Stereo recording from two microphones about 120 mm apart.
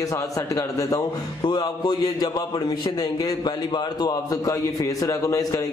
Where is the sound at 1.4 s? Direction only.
40° left (ahead or behind).